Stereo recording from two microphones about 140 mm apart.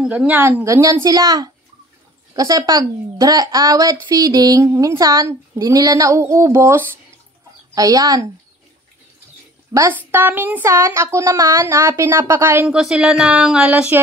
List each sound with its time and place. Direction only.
0.0 s a woman's voice: 10° right (ahead or behind); by 8.3 s 25° right (ahead or behind)
9.7 s a woman's voice: 20° right (ahead or behind)
12.7 s speech: 5° right (ahead or behind)